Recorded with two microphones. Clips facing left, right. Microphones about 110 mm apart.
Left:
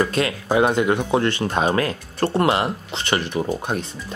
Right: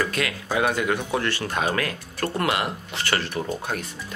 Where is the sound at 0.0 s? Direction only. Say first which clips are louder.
Left 5 dB; 30° left (ahead or behind).